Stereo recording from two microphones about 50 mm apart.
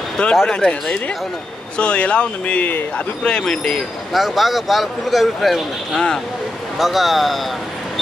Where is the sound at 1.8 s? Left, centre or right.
Left.